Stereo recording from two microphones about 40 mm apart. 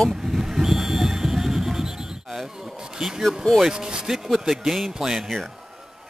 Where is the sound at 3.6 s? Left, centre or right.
Centre.